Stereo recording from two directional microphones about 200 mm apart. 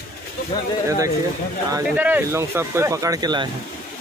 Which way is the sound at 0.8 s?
15° right (ahead or behind).